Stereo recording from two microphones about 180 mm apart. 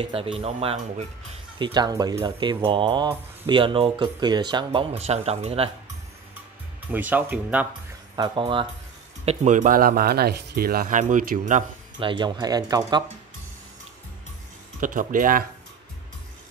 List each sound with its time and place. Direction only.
0.0 s speech: 30° right (ahead or behind)
1.6 s speech: 25° right (ahead or behind)
6.9 s speech: 10° right (ahead or behind)
8.2 s speech: 30° right (ahead or behind); by 11.6 s 45° right (ahead or behind)
12.0 s speech: 25° right (ahead or behind)
14.8 s speech: 50° right (ahead or behind)